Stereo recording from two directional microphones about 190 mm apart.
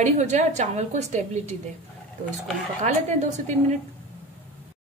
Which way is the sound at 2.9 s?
40° right (ahead or behind).